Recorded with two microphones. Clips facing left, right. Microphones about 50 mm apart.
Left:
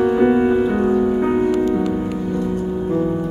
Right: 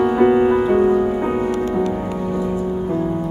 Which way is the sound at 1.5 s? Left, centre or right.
Right.